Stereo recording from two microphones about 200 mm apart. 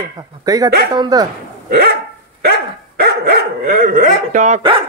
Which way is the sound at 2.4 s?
50° right (ahead or behind).